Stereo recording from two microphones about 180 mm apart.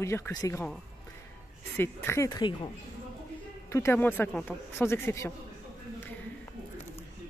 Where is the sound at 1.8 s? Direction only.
15° left (ahead or behind).